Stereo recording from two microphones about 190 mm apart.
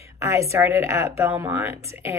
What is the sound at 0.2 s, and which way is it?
A woman's voice, 15° right (ahead or behind).